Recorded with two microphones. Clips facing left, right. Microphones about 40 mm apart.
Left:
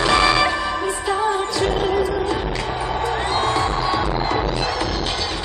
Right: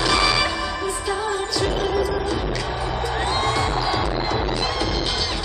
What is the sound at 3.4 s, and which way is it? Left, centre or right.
Music, centre.